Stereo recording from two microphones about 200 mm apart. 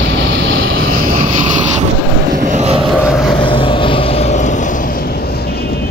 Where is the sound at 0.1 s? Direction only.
70° right (ahead or behind).